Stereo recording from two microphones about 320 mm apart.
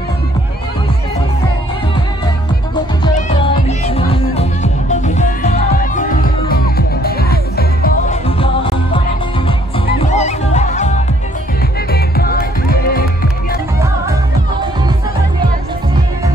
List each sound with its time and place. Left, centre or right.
3.0 s music: centre
9.9 s music: left